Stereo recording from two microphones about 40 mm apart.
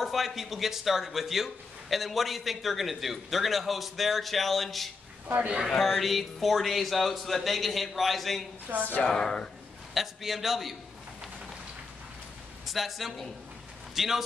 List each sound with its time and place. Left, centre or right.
0.0 s speech: centre
8.6 s a woman's voice: right
9.0 s speech: centre
9.9 s speech: centre
12.6 s speech: centre